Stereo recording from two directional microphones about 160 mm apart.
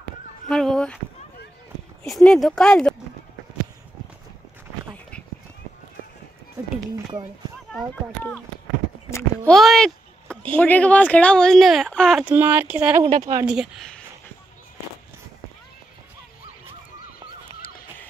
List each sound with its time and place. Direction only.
0.5 s speech: 5° left (ahead or behind)
2.0 s speech: centre (ahead or behind)
7.9 s speech: 10° left (ahead or behind)
9.5 s a sound: centre (ahead or behind)
10.5 s speech: 10° left (ahead or behind)
12.3 s speech: 10° right (ahead or behind)
13.2 s speech: 20° right (ahead or behind)
13.5 s speech: 5° right (ahead or behind)